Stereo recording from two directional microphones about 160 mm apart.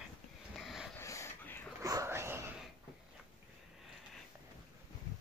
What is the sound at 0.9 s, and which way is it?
Dog, 15° left (ahead or behind).